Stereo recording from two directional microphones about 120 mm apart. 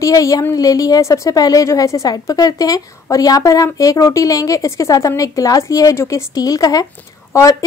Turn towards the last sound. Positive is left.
turn(degrees=25)  # may be behind; listen again after turning